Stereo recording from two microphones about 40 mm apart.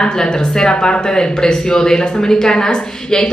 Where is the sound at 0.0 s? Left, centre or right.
Centre.